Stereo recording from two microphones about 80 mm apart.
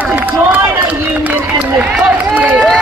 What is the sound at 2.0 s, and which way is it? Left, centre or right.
Run, centre.